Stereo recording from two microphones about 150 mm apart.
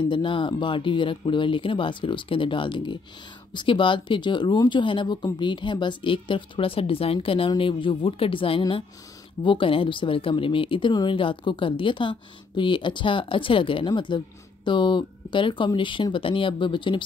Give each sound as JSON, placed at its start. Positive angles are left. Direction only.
{"t": 0.0, "sound": "speech", "side_deg": 35}